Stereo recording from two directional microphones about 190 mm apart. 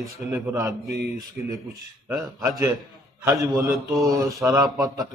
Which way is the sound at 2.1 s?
20° right (ahead or behind).